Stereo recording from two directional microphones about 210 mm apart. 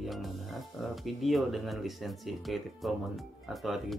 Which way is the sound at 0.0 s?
Centre (ahead or behind).